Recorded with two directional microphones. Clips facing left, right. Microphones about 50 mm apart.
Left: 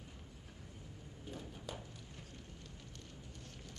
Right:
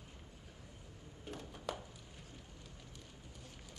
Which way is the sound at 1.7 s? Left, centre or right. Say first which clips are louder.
Right 6 dB; right.